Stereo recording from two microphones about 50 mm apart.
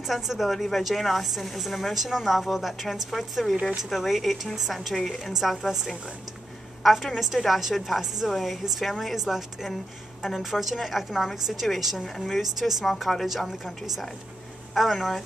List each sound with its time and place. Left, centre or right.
0.0 s a woman's voice: centre
6.8 s a woman's voice: centre